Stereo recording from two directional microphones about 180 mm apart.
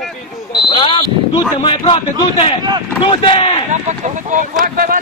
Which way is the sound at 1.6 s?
25° left (ahead or behind).